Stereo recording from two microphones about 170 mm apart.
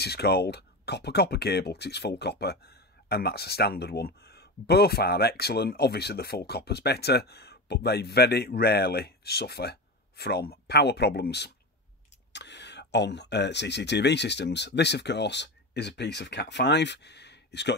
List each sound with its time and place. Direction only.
0.0 s speech: 70° left (ahead or behind)
12.3 s speech: 90° left